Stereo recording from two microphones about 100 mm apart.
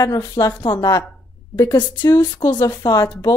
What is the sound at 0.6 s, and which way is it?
A woman's voice, 50° left (ahead or behind).